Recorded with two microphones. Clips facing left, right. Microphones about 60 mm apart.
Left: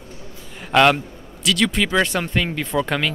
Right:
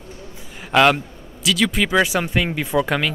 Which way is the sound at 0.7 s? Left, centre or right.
Centre.